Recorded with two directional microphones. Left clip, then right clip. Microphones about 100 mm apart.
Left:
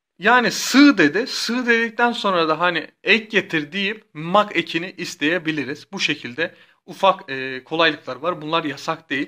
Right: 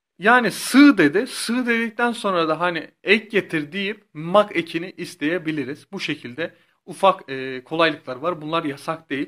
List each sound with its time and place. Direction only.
0.2 s speech: 35° right (ahead or behind)
6.9 s speech: 45° right (ahead or behind)